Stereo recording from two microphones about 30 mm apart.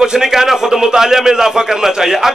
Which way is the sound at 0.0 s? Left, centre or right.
Right.